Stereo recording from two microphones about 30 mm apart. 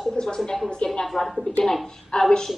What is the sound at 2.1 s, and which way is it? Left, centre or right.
Speech, left.